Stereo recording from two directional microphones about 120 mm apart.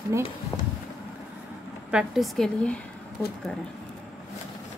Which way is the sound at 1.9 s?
Centre (ahead or behind).